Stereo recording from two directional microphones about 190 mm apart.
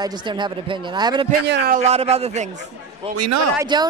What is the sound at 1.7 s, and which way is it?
A man's voice, 35° right (ahead or behind).